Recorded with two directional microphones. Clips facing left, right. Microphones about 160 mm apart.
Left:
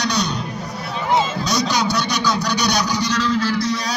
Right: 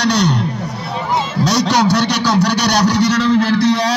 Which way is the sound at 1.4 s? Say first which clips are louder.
Right 6 dB; 70° right (ahead or behind).